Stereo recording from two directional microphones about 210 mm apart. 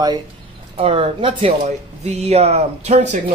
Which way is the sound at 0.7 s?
30° right (ahead or behind).